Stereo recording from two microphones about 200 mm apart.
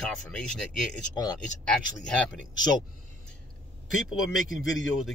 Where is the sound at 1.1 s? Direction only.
20° left (ahead or behind).